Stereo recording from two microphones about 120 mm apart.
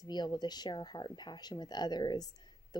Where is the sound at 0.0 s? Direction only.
35° left (ahead or behind).